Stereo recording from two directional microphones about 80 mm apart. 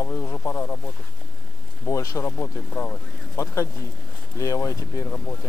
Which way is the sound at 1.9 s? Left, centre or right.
Left.